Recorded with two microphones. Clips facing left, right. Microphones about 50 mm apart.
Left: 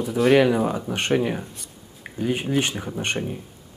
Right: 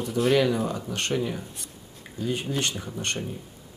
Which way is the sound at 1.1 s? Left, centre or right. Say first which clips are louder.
Left 7 dB; left.